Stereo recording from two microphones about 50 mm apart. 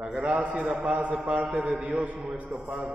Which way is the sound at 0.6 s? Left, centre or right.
Centre.